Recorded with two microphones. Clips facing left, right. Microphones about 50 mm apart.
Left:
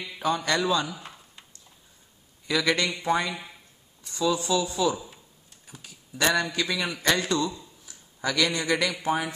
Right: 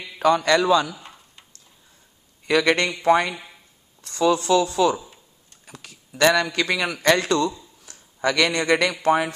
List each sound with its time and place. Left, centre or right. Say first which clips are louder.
0.2 s speech: right 7 dB; right
0.9 s tick-tock: even; centre
2.4 s a man's voice: right 6 dB; right
4.0 s a man's voice: right 6 dB; right
7.8 s a sound: right 7 dB; right
8.5 s a man's voice: right 6 dB; right
9.0 s speech: right 7 dB; right